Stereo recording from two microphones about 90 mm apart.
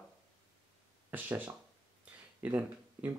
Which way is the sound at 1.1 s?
20° right (ahead or behind).